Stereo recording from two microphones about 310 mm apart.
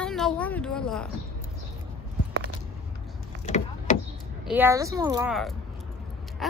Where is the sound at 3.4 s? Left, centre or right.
Left.